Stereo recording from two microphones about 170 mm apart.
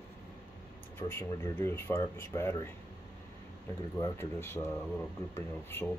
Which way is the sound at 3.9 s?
15° left (ahead or behind).